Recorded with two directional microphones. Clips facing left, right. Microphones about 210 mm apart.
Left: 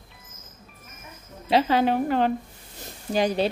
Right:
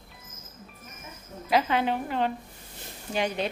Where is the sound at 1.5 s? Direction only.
40° left (ahead or behind).